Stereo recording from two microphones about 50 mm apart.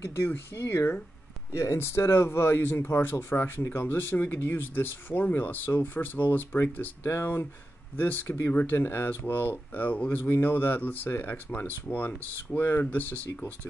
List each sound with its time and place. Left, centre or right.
0.3 s speech: left
1.5 s speech: left
10.3 s speech: left